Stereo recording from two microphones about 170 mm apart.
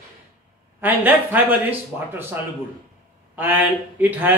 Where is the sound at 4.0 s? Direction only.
10° right (ahead or behind).